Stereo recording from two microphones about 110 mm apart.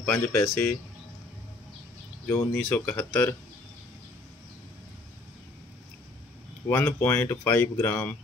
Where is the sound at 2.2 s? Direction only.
20° left (ahead or behind).